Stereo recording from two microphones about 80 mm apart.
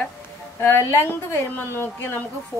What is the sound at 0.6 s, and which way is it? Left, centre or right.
A woman's voice, left.